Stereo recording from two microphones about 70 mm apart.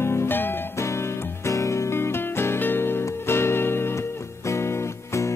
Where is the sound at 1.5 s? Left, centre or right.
Left.